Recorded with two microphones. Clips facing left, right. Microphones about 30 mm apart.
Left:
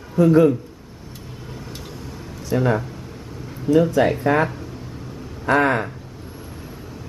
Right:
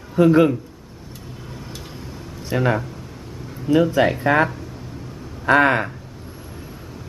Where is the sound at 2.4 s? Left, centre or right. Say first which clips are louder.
Left 1 dB; right.